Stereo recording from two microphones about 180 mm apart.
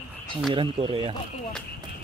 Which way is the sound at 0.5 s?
30° right (ahead or behind).